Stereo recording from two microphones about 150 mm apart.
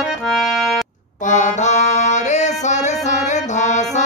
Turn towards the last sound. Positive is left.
turn(degrees=50)  # may be behind; listen again after turning